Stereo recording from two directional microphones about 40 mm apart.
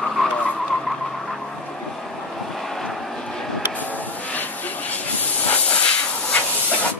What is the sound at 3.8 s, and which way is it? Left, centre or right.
Vehicle, left.